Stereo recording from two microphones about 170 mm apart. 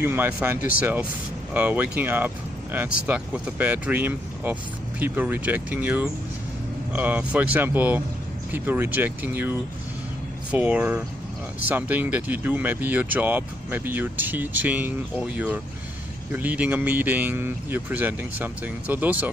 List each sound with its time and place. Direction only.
0.0 s speech: 10° right (ahead or behind)